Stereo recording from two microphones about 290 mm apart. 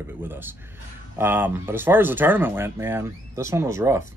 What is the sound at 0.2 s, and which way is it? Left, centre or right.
Speech, centre.